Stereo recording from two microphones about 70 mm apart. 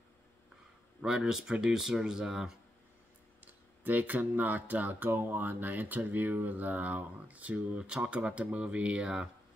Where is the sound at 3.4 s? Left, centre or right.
Right.